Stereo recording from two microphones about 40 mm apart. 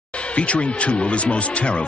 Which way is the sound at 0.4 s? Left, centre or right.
Left.